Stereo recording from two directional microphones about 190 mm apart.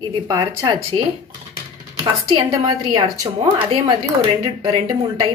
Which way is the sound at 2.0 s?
20° right (ahead or behind).